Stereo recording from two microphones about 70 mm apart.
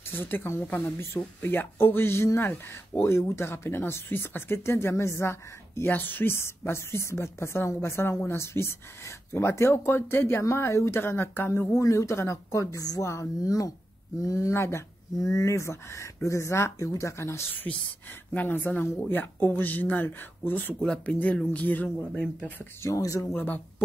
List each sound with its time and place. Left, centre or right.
0.1 s speech: left
11.8 s speech: left
15.1 s speech: left
18.3 s speech: left
22.8 s speech: left
23.3 s speech: left